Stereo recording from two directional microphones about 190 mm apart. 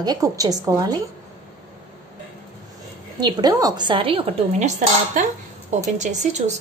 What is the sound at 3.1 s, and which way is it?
A woman's voice, 20° right (ahead or behind).